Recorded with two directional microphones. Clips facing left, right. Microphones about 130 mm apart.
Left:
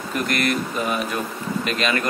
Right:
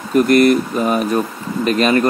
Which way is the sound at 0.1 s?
40° right (ahead or behind).